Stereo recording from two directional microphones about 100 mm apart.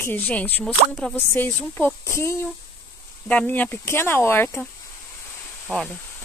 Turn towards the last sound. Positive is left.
turn(degrees=10)  # may be behind; listen again after turning